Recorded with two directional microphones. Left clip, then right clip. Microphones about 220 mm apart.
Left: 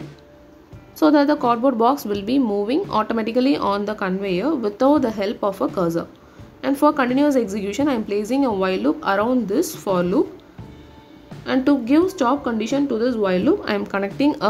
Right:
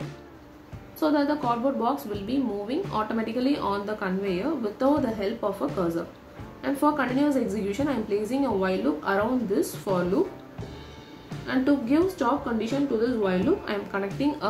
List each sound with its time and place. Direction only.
0.9 s a woman's voice: 45° left (ahead or behind)
11.4 s a woman's voice: 45° left (ahead or behind)